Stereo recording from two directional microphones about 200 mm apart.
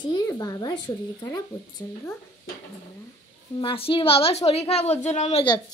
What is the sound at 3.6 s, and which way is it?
A woman's voice, 25° left (ahead or behind).